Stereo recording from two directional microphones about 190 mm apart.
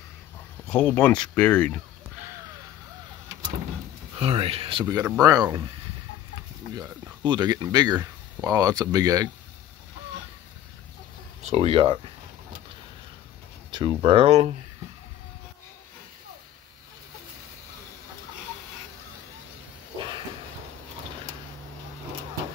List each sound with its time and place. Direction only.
0.7 s speech: 5° left (ahead or behind)
4.1 s speech: 30° right (ahead or behind)
6.7 s speech: 20° right (ahead or behind)
11.4 s speech: 30° right (ahead or behind)
13.7 s speech: 25° right (ahead or behind)